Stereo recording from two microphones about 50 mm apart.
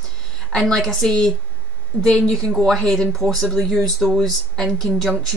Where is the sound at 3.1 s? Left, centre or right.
Centre.